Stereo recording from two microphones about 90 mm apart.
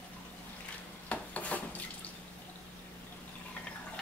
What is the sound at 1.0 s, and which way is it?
Rub, 15° left (ahead or behind).